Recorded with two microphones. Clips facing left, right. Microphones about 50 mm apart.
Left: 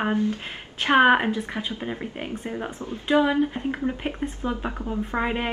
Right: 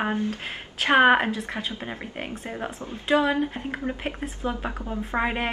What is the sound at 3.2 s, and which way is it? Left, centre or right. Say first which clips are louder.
Speech: left 2 dB; centre.